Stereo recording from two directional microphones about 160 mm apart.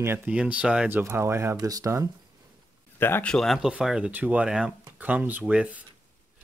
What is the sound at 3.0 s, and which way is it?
Speech, 15° left (ahead or behind).